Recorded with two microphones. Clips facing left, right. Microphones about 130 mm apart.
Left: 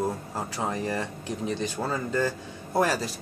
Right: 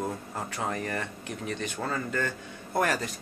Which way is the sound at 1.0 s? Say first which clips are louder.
Left 4 dB; 30° left (ahead or behind).